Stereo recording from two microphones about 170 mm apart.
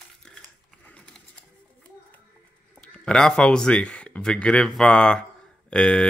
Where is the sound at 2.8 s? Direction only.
5° left (ahead or behind).